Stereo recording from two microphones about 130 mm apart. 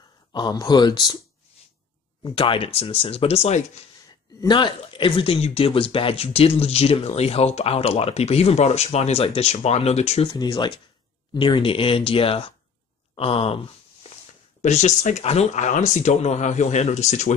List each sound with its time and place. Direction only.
0.3 s speech: 30° left (ahead or behind)
2.2 s speech: 40° left (ahead or behind)
4.4 s speech: 35° left (ahead or behind); by 10.3 s 55° left (ahead or behind)
10.3 s speech: 35° left (ahead or behind)
13.1 s a sound: 50° left (ahead or behind)
14.6 s speech: 65° left (ahead or behind)